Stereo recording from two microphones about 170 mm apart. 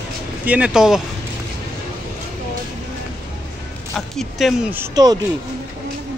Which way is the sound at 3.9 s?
Centre (ahead or behind).